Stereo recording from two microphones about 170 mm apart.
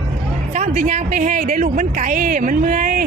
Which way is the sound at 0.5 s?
45° right (ahead or behind).